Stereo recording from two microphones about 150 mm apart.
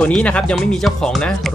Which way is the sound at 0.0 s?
5° left (ahead or behind).